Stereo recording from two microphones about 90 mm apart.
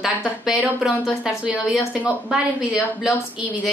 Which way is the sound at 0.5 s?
5° right (ahead or behind).